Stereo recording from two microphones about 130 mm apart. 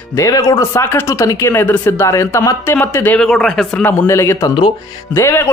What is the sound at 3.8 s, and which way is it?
Speech, 20° left (ahead or behind).